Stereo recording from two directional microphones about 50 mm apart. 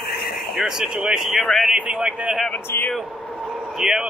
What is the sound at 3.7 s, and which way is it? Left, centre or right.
Speech, centre.